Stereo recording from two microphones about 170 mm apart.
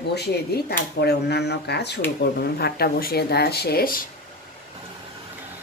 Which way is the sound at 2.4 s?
70° left (ahead or behind).